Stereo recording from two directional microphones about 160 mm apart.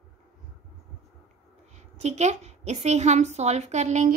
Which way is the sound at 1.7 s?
45° right (ahead or behind).